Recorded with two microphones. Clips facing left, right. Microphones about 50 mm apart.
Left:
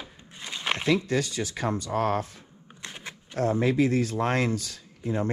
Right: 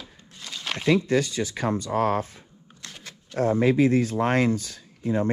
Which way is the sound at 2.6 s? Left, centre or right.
Left.